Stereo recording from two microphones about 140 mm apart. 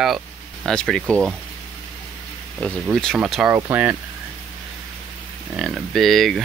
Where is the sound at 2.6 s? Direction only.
10° left (ahead or behind).